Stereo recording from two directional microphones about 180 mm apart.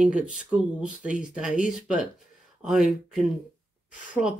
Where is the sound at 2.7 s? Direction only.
5° right (ahead or behind).